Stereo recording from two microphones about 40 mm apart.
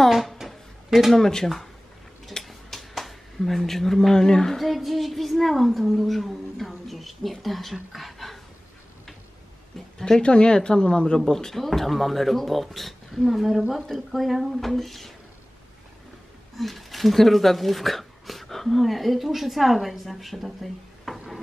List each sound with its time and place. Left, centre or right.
0.1 s a sound: centre
0.8 s speech: centre
1.1 s speech: centre
2.4 s a sound: centre
4.6 s a woman's voice: centre
9.8 s a sound: centre
10.2 s speech: left
11.1 s a woman's voice: centre
16.5 s speech: centre